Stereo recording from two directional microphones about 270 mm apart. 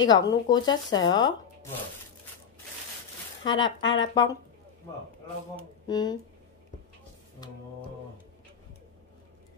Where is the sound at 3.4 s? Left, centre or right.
Centre.